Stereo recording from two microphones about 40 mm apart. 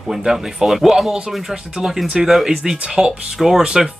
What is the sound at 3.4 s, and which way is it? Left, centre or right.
Speech, centre.